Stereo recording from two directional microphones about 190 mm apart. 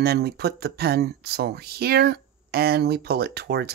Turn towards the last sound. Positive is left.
turn(degrees=-60)  # may be behind; listen again after turning